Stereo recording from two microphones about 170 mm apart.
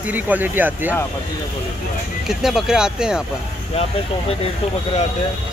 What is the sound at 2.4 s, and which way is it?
Speech, 5° right (ahead or behind).